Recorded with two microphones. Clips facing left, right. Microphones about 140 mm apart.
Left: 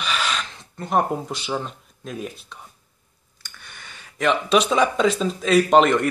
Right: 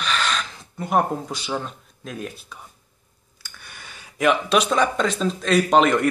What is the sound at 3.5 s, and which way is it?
Speech, 10° right (ahead or behind).